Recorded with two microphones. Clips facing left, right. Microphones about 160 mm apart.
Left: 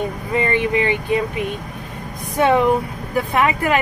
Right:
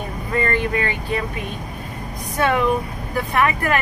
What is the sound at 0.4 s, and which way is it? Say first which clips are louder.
Speech: left 3 dB; 20° left (ahead or behind).